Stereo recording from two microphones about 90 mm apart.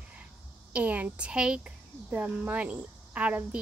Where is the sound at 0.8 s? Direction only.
15° right (ahead or behind).